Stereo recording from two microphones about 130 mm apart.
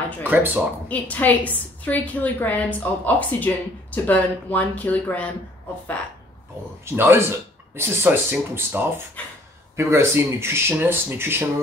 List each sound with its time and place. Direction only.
0.2 s speech: 15° right (ahead or behind)
0.8 s a woman's voice: 10° left (ahead or behind)
6.8 s speech: 20° right (ahead or behind)